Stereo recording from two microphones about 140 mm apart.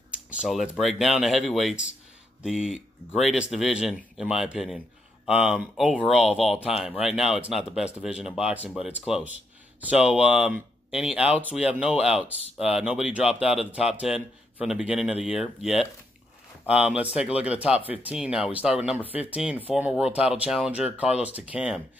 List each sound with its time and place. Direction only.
0.1 s a man's voice: 10° right (ahead or behind)